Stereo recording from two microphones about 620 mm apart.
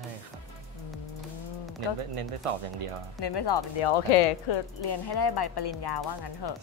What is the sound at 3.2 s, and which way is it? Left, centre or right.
Speech, left.